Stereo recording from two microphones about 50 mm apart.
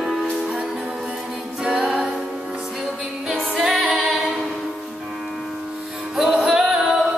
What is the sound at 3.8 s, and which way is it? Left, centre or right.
A capella, centre.